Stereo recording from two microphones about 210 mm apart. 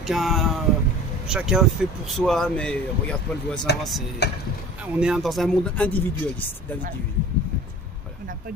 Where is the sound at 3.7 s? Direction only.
50° left (ahead or behind).